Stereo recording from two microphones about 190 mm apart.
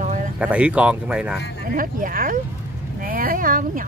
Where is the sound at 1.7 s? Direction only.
45° right (ahead or behind).